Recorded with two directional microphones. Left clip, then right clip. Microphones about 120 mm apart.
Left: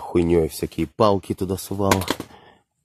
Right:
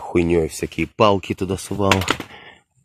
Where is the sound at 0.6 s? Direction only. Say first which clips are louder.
Right 2 dB; 5° left (ahead or behind).